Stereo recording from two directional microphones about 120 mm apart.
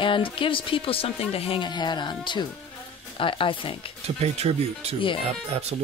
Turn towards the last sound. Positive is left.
turn(degrees=-60)  # may be behind; listen again after turning